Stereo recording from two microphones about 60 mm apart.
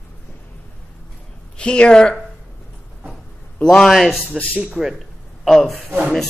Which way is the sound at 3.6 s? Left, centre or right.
Centre.